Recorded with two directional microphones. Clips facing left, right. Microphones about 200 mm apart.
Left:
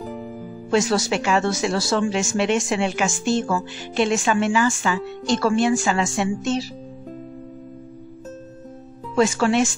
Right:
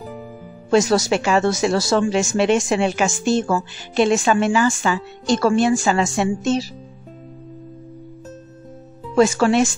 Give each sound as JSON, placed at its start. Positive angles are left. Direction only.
{"t": 0.7, "sound": "speech", "side_deg": -40}
{"t": 9.1, "sound": "speech", "side_deg": -40}